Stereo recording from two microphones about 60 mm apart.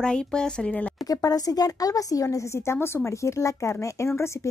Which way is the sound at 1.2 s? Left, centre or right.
Left.